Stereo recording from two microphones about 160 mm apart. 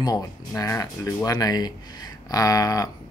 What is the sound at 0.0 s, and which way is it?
Speech, 25° left (ahead or behind).